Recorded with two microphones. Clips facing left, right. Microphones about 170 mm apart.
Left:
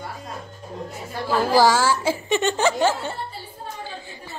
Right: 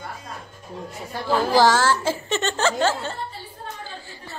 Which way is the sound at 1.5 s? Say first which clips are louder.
Even; 10° left (ahead or behind).